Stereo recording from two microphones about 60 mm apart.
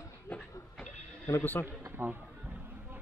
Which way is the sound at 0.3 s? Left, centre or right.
Left.